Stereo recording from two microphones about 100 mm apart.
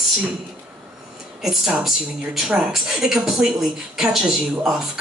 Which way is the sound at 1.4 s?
5° right (ahead or behind).